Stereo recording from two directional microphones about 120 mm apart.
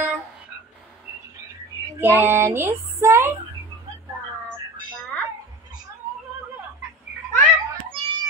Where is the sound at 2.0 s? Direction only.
15° right (ahead or behind).